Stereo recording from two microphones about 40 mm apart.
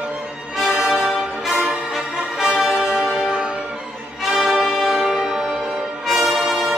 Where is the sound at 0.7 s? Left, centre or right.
Centre.